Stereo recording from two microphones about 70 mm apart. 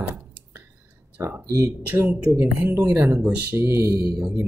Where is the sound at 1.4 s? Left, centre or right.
Right.